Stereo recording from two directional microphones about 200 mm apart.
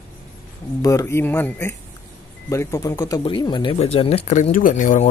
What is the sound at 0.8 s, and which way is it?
Speech, 15° left (ahead or behind).